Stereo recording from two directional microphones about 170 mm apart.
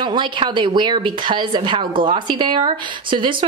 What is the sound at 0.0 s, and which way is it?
A woman's voice, 30° right (ahead or behind).